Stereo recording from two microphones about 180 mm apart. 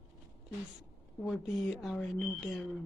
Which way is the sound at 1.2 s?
Centre (ahead or behind).